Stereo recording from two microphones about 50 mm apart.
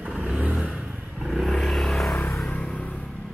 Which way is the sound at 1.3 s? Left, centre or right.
Centre.